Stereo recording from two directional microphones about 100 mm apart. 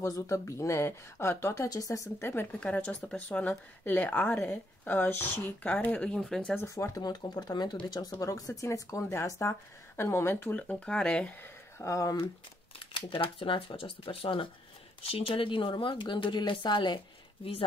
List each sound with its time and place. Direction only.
0.0 s speech: 30° left (ahead or behind)
2.6 s speech: 15° left (ahead or behind)
6.6 s speech: 30° left (ahead or behind)
10.5 s speech: 10° left (ahead or behind)
11.8 s speech: 30° left (ahead or behind)
12.7 s speech: 55° left (ahead or behind)
15.0 s speech: 70° left (ahead or behind); by 17.0 s 50° left (ahead or behind)